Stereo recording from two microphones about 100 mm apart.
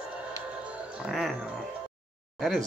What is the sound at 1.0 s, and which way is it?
Music, centre (ahead or behind).